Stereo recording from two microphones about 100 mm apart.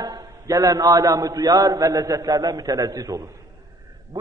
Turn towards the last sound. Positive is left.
turn(degrees=-35)  # may be behind; listen again after turning